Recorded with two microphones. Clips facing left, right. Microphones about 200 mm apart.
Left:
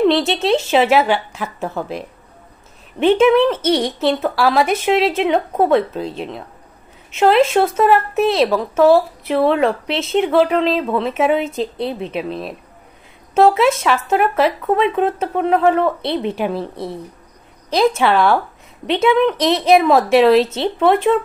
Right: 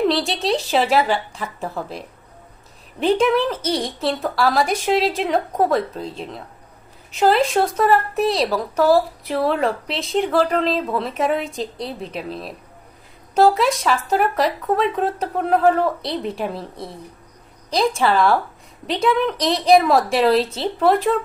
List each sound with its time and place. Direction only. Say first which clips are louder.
0.4 s speech: left 4 dB; centre (ahead or behind)
3.5 s speech: left 6 dB; 30° left (ahead or behind)
4.1 s speech: left 2 dB; centre (ahead or behind)
7.2 s speech: left 4 dB; centre (ahead or behind)
17.7 s speech: left 3 dB; centre (ahead or behind)
19.3 s speech: left 4 dB; 30° left (ahead or behind)
19.6 s speech: left 1 dB; centre (ahead or behind)